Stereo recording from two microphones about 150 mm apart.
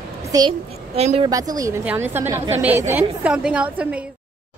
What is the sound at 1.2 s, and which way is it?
Speech, 25° right (ahead or behind).